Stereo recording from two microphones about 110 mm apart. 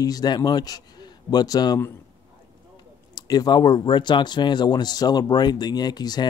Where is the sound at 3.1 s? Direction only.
40° left (ahead or behind).